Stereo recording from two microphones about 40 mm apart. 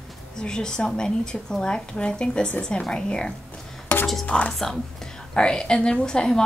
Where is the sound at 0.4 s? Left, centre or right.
Centre.